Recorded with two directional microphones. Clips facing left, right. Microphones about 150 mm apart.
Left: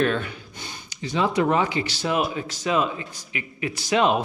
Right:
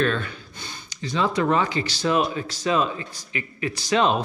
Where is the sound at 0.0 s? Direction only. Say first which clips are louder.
Left 1 dB; 15° left (ahead or behind).